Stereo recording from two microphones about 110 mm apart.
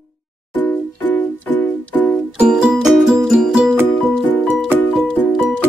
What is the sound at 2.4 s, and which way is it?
Music, 5° right (ahead or behind).